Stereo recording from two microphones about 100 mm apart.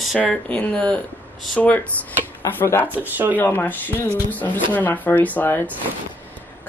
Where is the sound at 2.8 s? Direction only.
15° right (ahead or behind).